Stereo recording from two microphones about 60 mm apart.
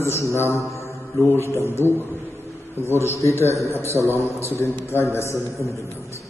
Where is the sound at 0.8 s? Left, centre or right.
Left.